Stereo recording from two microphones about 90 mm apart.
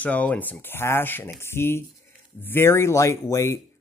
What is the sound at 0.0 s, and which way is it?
Speech, 15° left (ahead or behind).